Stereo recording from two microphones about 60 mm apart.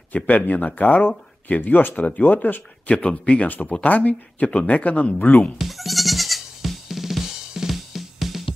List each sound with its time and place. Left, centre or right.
0.1 s speech: left
5.6 s drum: centre